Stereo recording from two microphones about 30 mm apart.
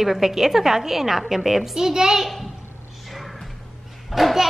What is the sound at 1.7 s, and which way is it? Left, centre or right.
Speech, centre.